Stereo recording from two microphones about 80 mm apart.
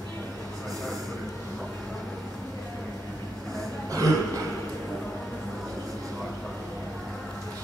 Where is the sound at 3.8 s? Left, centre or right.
Right.